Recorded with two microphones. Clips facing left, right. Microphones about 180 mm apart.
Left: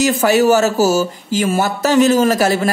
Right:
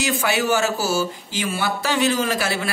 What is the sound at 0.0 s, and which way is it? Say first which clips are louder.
A man's voice: left 9 dB; 40° left (ahead or behind).